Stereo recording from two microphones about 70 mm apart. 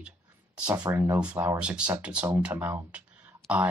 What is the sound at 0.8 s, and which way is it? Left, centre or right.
Speech, right.